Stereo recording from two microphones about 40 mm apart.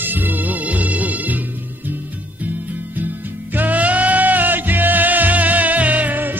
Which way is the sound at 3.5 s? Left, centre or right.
Right.